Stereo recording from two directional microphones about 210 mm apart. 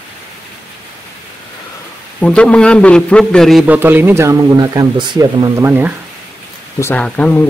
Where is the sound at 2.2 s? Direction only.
5° left (ahead or behind); by 5.9 s 10° right (ahead or behind).